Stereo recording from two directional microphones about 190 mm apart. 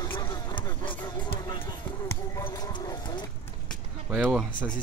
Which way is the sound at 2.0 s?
15° left (ahead or behind).